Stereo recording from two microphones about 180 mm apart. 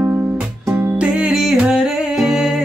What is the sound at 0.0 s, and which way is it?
Music, 15° right (ahead or behind).